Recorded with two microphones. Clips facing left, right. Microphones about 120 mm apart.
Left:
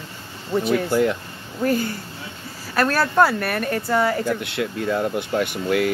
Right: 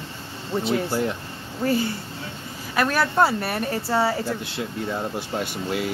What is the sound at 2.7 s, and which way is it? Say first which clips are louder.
Speech: left 2 dB; 15° right (ahead or behind).